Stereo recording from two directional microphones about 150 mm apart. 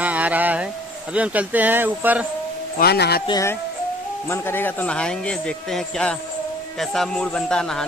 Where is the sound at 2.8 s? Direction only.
90° left.